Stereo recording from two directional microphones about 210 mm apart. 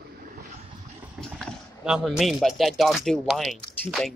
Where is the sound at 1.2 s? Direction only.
Centre (ahead or behind).